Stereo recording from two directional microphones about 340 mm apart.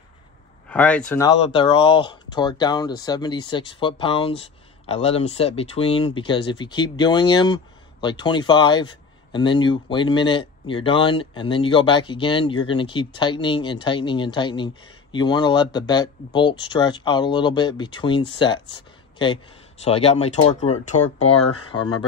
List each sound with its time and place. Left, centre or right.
0.7 s speech: centre